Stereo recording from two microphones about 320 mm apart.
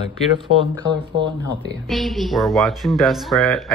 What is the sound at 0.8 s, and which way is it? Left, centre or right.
Speech, centre.